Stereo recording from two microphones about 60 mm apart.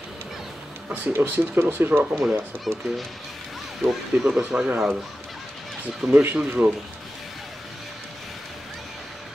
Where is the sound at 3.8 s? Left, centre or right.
Centre.